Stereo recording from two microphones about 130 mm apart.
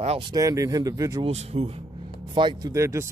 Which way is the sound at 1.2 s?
55° right (ahead or behind).